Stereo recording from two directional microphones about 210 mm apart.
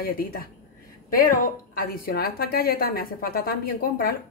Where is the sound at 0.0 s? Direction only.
45° left (ahead or behind).